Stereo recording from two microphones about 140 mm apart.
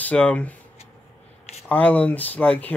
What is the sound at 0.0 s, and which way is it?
Speech, 10° left (ahead or behind).